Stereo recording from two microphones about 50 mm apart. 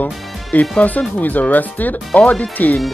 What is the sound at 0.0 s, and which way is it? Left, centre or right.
Speech, left.